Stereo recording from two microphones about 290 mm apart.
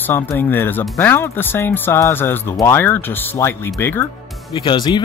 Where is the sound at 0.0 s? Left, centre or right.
Centre.